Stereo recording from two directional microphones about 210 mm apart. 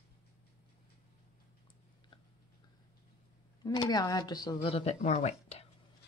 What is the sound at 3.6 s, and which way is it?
Speech, 20° left (ahead or behind).